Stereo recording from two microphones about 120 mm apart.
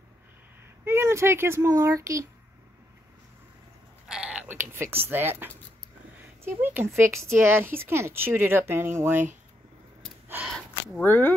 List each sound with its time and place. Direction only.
0.8 s a child's voice: 20° right (ahead or behind)
4.1 s a sound: 5° right (ahead or behind)
4.9 s speech: 20° right (ahead or behind)
10.2 s gasp: 15° right (ahead or behind)
11.1 s speech: 15° left (ahead or behind)